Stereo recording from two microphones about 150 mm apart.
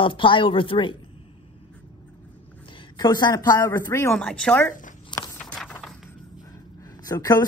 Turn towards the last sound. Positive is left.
turn(degrees=25)  # may be behind; listen again after turning